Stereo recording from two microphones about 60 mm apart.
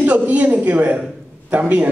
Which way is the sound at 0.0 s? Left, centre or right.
Right.